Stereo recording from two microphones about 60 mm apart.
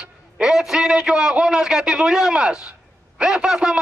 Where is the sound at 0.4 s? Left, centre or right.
Centre.